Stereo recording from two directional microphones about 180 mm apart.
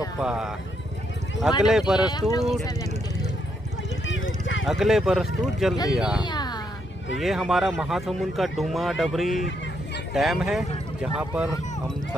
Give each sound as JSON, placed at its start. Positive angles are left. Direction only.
{"t": 0.2, "sound": "a man's voice", "side_deg": -5}
{"t": 1.6, "sound": "a man's voice", "side_deg": -5}
{"t": 2.0, "sound": "speech", "side_deg": 25}
{"t": 4.0, "sound": "a sound", "side_deg": 90}
{"t": 4.6, "sound": "a man's voice", "side_deg": 0}
{"t": 6.2, "sound": "a sound", "side_deg": 25}
{"t": 7.2, "sound": "a man's voice", "side_deg": 0}